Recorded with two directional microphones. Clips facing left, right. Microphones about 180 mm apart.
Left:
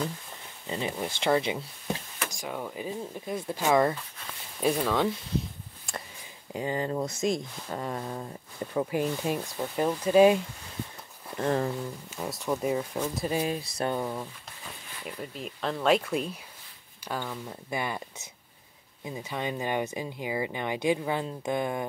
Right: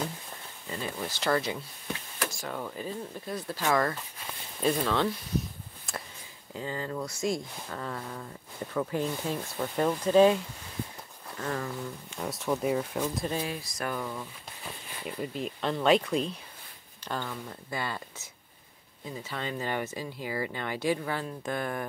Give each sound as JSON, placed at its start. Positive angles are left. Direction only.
{"t": 0.7, "sound": "speech", "side_deg": 20}
{"t": 4.6, "sound": "speech", "side_deg": 10}
{"t": 5.9, "sound": "a sound", "side_deg": 0}
{"t": 6.5, "sound": "speech", "side_deg": 15}
{"t": 11.3, "sound": "speech", "side_deg": 30}
{"t": 12.2, "sound": "speech", "side_deg": 0}
{"t": 13.3, "sound": "speech", "side_deg": 15}
{"t": 13.6, "sound": "speech", "side_deg": 30}
{"t": 15.0, "sound": "speech", "side_deg": 0}